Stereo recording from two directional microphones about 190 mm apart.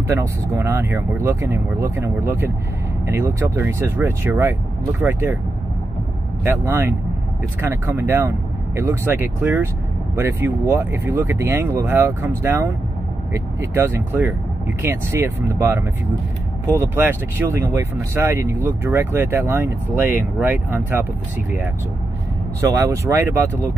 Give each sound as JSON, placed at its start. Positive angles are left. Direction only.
{"t": 0.0, "sound": "speech", "side_deg": -15}
{"t": 6.4, "sound": "speech", "side_deg": -10}
{"t": 22.6, "sound": "speech", "side_deg": -15}